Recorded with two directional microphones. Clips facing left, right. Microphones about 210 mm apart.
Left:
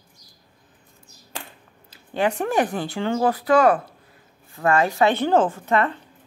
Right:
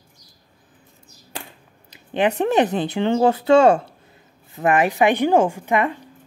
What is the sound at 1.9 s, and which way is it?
A woman's voice, 20° right (ahead or behind).